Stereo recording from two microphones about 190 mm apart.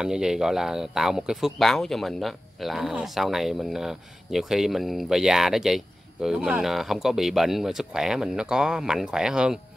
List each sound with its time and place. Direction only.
0.0 s speech: 5° right (ahead or behind)